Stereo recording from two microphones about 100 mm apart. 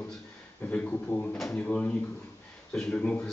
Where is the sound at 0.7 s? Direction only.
15° left (ahead or behind).